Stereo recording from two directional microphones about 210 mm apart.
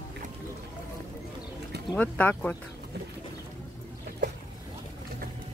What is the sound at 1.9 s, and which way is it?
Speech, 5° left (ahead or behind).